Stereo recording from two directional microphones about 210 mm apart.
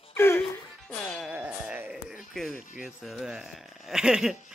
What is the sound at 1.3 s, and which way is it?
Music, 10° right (ahead or behind).